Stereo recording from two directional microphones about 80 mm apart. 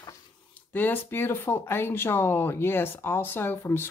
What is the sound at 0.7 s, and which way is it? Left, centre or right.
Speech, left.